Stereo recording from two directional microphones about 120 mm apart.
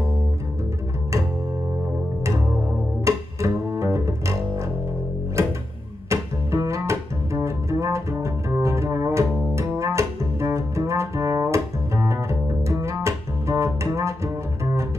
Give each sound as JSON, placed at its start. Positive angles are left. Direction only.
{"t": 3.1, "sound": "double bass", "side_deg": -25}
{"t": 5.4, "sound": "music", "side_deg": -25}
{"t": 6.0, "sound": "double bass", "side_deg": -25}